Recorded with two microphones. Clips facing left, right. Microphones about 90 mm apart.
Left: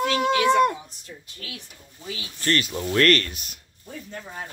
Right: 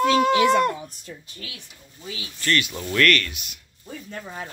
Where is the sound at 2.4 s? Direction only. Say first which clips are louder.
Even; 35° left (ahead or behind).